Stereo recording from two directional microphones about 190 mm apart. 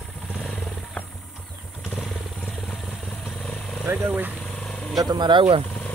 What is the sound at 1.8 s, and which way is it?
Motorcycle, centre (ahead or behind).